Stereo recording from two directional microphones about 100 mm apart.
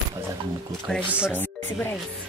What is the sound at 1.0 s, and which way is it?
Speech, 10° right (ahead or behind).